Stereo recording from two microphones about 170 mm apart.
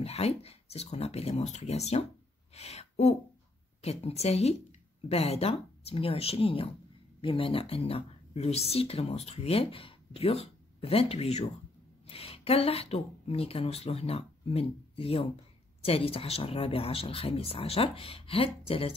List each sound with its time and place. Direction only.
0.0 s speech: 35° left (ahead or behind)